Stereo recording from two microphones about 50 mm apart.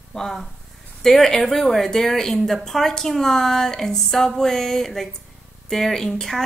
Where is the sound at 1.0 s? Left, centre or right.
Centre.